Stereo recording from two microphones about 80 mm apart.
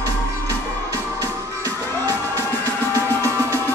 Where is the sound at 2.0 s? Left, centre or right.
Right.